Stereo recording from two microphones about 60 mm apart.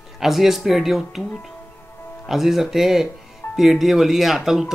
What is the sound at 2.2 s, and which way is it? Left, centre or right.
Speech, centre.